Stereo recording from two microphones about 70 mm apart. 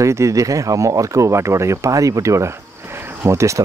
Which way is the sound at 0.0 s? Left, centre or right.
Right.